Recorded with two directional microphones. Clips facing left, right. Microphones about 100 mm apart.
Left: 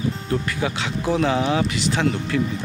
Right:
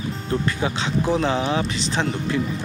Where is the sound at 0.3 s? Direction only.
30° right (ahead or behind).